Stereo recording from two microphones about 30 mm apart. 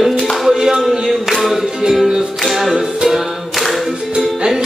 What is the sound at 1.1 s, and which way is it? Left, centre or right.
Music, centre.